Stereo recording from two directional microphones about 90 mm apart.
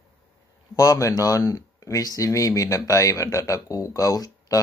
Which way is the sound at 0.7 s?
40° left (ahead or behind).